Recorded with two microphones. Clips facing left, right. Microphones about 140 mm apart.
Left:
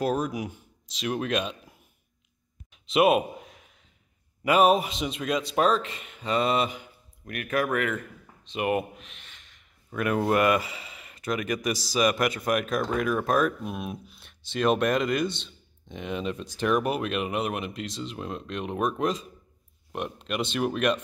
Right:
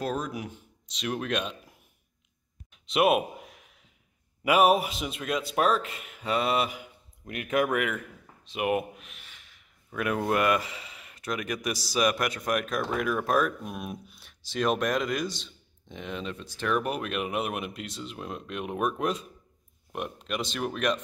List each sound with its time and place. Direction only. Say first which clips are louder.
0.0 s speech: left 4 dB; 10° left (ahead or behind)
2.7 s a sound: left 2 dB; centre (ahead or behind)
4.4 s speech: left 1 dB; 10° right (ahead or behind)
7.2 s speech: right 1 dB; 20° right (ahead or behind)
8.5 s speech: left 1 dB; centre (ahead or behind)